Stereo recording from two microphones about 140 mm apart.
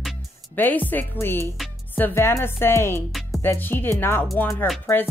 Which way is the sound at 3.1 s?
Centre (ahead or behind).